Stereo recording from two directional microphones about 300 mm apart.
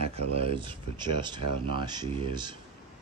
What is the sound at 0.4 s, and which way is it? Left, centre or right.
Speech, centre.